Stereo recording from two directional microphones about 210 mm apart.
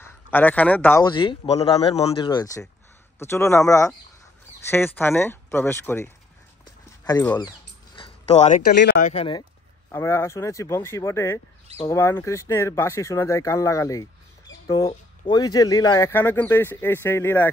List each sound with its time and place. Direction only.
0.0 s speech: 10° left (ahead or behind)
1.0 s speech: 25° left (ahead or behind)
7.1 s a sound: 15° left (ahead or behind); by 8.7 s 35° left (ahead or behind)
8.7 s speech: 55° left (ahead or behind)
9.0 s speech: 25° left (ahead or behind)
9.8 s speech: 15° left (ahead or behind)